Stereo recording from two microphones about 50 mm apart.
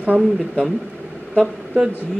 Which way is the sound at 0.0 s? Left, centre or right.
Right.